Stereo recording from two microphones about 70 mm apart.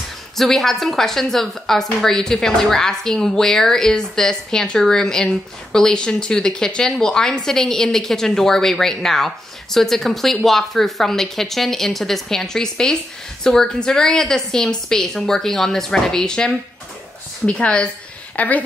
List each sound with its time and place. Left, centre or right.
0.4 s a woman's voice: centre; by 18.6 s left